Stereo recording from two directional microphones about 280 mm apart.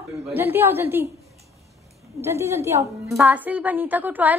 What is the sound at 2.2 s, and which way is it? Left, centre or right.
A woman's voice, centre.